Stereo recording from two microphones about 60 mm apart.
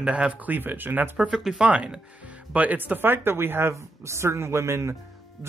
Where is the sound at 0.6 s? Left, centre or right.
Right.